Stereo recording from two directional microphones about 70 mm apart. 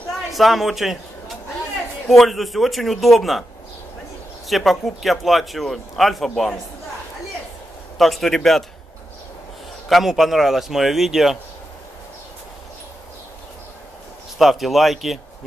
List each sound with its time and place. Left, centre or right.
0.3 s a man's voice: centre
4.5 s speech: centre
8.0 s speech: centre
9.8 s speech: centre
14.4 s speech: centre